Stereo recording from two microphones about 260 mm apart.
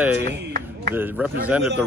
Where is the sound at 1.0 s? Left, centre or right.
Centre.